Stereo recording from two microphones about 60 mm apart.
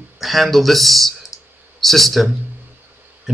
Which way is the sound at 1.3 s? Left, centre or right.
Left.